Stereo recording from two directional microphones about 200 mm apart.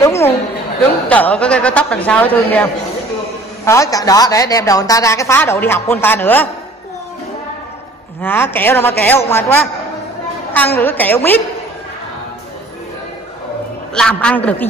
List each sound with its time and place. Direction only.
0.0 s a sound: 15° left (ahead or behind)
1.0 s a woman's voice: 5° left (ahead or behind)
8.2 s a woman's voice: 10° left (ahead or behind)
10.8 s a woman's voice: 10° left (ahead or behind)
13.9 s a man's voice: 5° left (ahead or behind)